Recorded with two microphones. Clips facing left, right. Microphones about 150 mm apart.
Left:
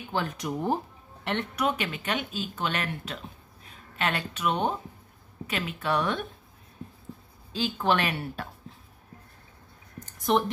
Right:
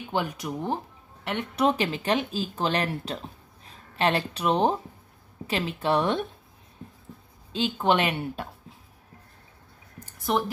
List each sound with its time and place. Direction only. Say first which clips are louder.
0.1 s speech: right 2 dB; 10° right (ahead or behind)
0.5 s speech: left 2 dB; 5° left (ahead or behind)
1.5 s speech: right 9 dB; 30° right (ahead or behind)
7.5 s speech: right 2 dB; 20° right (ahead or behind)
10.3 s speech: left 1 dB; 5° right (ahead or behind)